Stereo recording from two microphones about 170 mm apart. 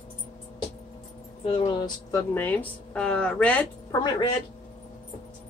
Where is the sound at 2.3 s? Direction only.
10° left (ahead or behind).